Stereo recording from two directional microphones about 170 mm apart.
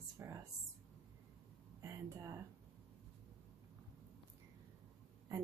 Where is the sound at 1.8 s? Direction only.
20° right (ahead or behind).